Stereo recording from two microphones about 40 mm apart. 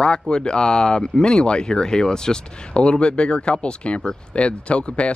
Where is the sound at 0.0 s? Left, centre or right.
Left.